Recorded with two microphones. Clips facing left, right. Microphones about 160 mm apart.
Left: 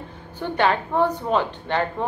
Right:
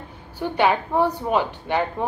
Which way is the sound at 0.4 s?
10° right (ahead or behind).